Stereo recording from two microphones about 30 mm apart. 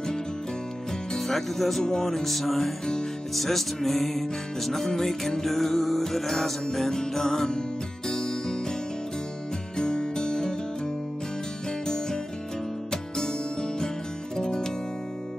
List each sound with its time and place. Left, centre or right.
1.1 s speech: centre
2.0 s music: centre; by 8.5 s left
9.8 s music: left
12.9 s music: left